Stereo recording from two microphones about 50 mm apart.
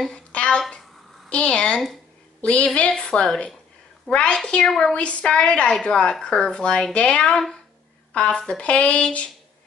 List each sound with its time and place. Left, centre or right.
0.1 s a sound: left
1.3 s a woman's voice: left
4.6 s a woman's voice: centre
4.9 s a woman's voice: left
7.3 s a woman's voice: centre